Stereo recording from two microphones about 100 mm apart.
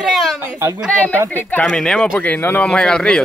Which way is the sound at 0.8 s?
15° left (ahead or behind).